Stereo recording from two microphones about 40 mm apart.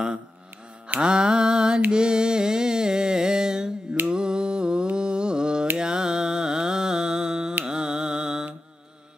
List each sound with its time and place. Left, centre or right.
1.0 s mantra: right
1.9 s music: right
4.1 s mantra: centre
7.6 s a sound: right